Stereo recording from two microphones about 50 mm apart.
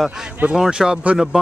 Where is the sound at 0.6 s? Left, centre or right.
Centre.